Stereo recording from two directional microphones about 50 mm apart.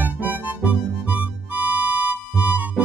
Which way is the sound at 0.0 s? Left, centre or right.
Right.